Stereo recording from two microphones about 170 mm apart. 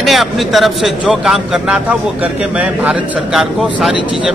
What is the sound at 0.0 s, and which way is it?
A man's voice, centre (ahead or behind).